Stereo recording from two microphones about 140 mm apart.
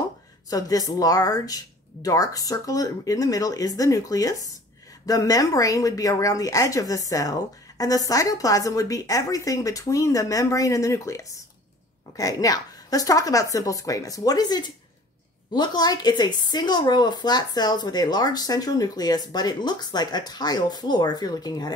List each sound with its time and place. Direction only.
0.5 s a woman's voice: 25° left (ahead or behind)